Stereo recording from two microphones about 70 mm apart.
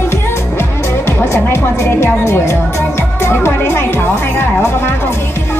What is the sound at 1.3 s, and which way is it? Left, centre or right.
Speech, left.